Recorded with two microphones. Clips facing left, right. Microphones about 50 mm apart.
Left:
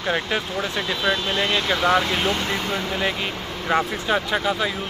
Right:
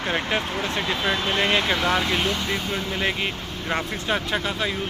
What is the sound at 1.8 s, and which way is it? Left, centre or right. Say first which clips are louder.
Speech: left 3 dB; centre.